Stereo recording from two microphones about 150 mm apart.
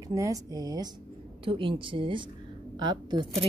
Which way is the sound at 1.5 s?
35° right (ahead or behind).